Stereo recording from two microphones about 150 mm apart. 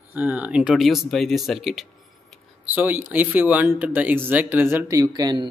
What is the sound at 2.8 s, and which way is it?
A man's voice, 15° right (ahead or behind).